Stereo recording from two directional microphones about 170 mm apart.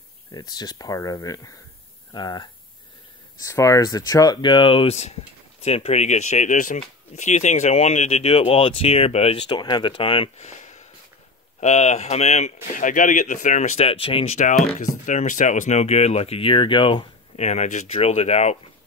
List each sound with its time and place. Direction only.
0.3 s speech: 25° left (ahead or behind); by 18.6 s 40° left (ahead or behind)